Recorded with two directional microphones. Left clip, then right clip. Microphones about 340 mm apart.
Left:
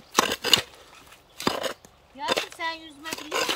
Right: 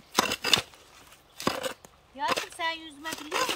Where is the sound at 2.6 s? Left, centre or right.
Centre.